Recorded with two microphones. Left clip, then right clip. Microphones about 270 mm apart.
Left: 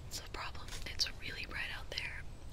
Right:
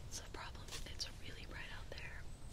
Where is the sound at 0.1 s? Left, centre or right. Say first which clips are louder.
Left 6 dB; centre.